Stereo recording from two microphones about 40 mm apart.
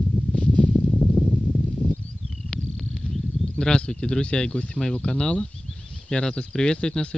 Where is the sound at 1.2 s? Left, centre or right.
Right.